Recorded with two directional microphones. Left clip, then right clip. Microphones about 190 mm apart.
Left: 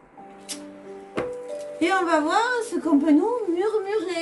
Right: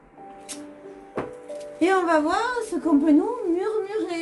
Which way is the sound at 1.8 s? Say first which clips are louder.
Right 1 dB; centre (ahead or behind).